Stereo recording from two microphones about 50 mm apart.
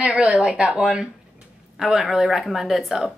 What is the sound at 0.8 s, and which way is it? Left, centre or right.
Speech, centre.